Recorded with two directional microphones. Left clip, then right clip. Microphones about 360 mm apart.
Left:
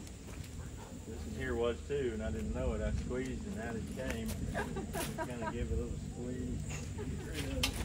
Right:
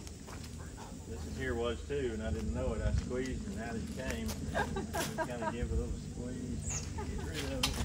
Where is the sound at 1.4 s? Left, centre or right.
Centre.